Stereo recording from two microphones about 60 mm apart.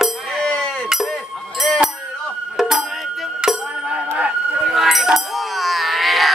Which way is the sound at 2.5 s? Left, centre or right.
Centre.